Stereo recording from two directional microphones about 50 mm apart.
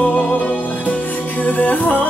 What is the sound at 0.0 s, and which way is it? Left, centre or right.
Music, left.